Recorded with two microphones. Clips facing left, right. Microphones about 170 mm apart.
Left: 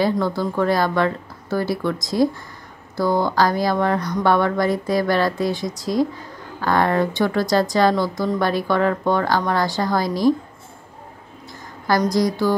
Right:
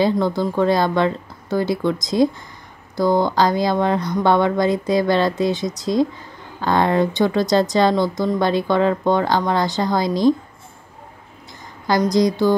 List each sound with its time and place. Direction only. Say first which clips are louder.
0.0 s speech: right 2 dB; 20° right (ahead or behind)
11.9 s speech: right 2 dB; 20° right (ahead or behind)